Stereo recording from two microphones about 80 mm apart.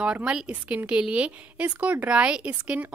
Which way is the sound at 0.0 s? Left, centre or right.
Centre.